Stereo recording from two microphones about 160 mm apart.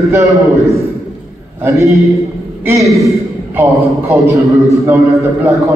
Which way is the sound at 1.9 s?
Centre (ahead or behind).